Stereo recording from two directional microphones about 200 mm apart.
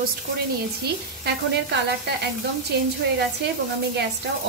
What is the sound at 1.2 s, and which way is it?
Speech, 55° right (ahead or behind).